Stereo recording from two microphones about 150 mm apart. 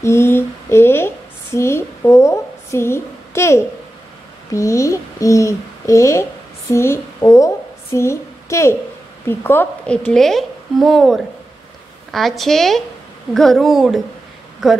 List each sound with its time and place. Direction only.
0.0 s a child's voice: 15° left (ahead or behind); by 14.8 s centre (ahead or behind)